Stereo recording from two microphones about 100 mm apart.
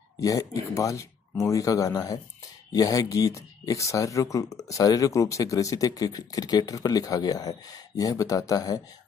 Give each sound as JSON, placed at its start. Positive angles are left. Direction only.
{"t": 0.2, "sound": "speech", "side_deg": 35}